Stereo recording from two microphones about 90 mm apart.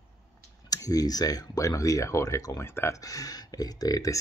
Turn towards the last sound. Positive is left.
turn(degrees=40)  # may be behind; listen again after turning